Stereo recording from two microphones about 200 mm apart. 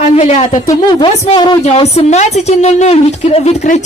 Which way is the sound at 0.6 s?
20° left (ahead or behind).